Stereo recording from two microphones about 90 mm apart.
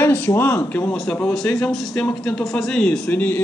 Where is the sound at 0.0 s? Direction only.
20° left (ahead or behind).